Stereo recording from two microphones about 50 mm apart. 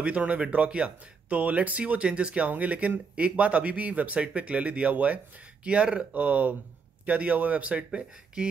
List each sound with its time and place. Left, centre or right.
0.0 s speech: right